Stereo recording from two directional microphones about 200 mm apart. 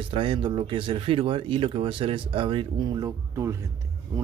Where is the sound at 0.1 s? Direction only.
25° right (ahead or behind).